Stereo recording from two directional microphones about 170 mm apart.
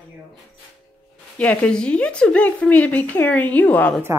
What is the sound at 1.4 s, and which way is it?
A woman's voice, 5° left (ahead or behind).